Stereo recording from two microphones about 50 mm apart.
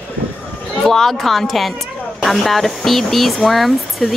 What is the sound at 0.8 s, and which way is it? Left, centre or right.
A woman's voice, centre.